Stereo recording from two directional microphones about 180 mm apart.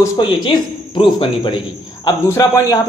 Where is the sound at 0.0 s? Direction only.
25° left (ahead or behind).